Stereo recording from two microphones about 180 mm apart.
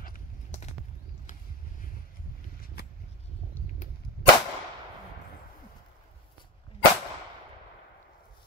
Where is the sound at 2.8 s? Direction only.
60° left (ahead or behind).